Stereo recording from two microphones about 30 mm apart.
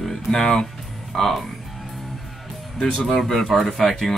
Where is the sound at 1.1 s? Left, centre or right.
Centre.